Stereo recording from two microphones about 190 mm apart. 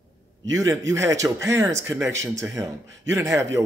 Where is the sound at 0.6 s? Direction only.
15° right (ahead or behind).